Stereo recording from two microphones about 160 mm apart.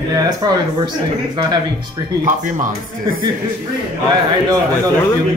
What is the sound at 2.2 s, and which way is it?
Speech, 55° right (ahead or behind).